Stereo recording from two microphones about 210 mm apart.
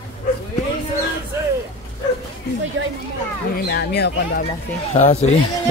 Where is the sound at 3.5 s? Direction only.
50° left (ahead or behind).